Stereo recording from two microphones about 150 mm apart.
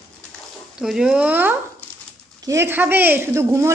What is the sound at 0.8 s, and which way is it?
A woman's voice, 5° right (ahead or behind).